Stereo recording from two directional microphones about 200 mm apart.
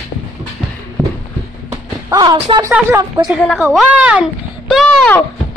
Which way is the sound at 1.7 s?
15° right (ahead or behind).